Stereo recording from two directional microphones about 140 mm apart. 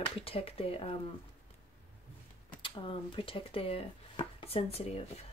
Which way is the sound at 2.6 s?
40° left (ahead or behind).